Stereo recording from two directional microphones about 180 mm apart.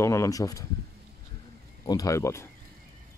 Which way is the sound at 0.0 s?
15° left (ahead or behind).